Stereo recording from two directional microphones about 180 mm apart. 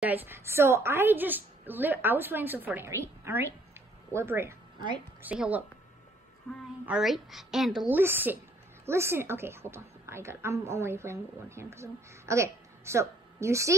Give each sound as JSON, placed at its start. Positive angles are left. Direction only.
{"t": 0.0, "sound": "a woman's voice", "side_deg": -10}
{"t": 4.1, "sound": "a woman's voice", "side_deg": -15}
{"t": 6.9, "sound": "a woman's voice", "side_deg": 0}
{"t": 8.0, "sound": "a woman's voice", "side_deg": -10}